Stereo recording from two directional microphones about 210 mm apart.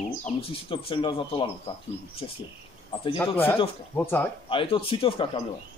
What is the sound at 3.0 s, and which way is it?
Speech, 10° left (ahead or behind).